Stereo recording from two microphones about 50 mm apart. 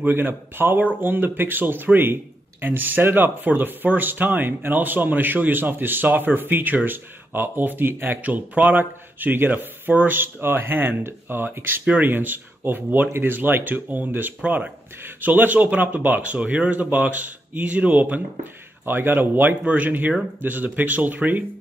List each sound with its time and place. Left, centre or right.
0.0 s speech: right
15.0 s speech: right
18.9 s speech: right
19.6 s speech: right